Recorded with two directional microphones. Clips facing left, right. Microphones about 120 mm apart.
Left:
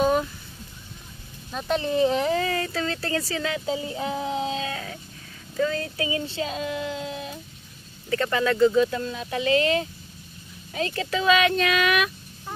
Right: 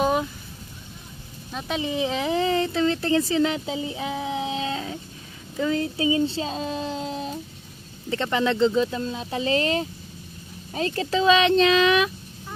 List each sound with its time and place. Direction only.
0.0 s a sound: 5° right (ahead or behind)
1.5 s speech: 5° right (ahead or behind)
2.3 s speech: 25° right (ahead or behind)
8.1 s speech: 20° right (ahead or behind)